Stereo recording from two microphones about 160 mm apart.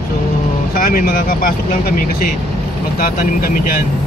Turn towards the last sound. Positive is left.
turn(degrees=60)  # may be behind; listen again after turning